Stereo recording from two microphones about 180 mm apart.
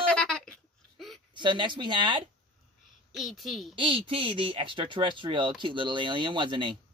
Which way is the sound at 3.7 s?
30° right (ahead or behind).